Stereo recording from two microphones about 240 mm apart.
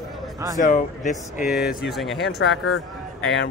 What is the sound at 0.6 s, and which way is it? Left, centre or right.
Speech, left.